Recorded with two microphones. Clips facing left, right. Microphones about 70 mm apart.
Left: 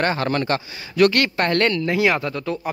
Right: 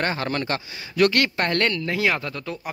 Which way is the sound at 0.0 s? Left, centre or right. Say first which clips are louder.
Left 4 dB; left.